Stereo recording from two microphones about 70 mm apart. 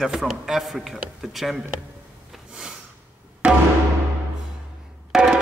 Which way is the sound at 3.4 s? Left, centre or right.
Centre.